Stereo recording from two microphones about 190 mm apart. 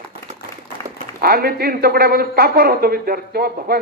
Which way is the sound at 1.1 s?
55° right (ahead or behind).